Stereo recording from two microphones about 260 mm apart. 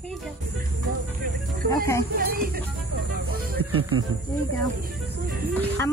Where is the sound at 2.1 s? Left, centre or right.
Right.